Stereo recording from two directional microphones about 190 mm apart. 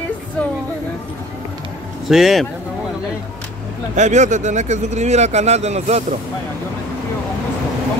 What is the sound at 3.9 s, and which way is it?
Speech, 40° right (ahead or behind).